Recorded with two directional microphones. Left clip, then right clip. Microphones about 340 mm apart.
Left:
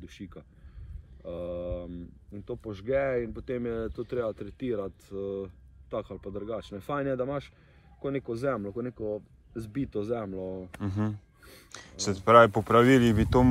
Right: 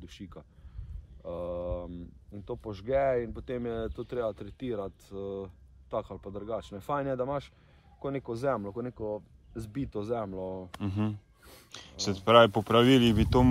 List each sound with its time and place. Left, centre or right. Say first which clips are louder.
1.2 s speech: even; centre
1.9 s speech: left 2 dB; right
2.4 s speech: left 2 dB; centre